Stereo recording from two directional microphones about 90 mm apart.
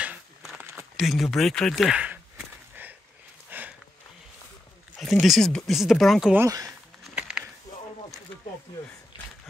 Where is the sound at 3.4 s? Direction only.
20° right (ahead or behind).